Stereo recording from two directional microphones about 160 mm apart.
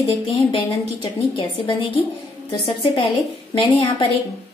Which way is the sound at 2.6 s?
35° left (ahead or behind).